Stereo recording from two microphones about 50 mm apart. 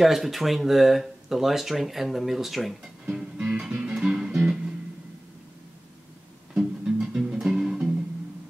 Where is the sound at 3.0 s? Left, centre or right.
Centre.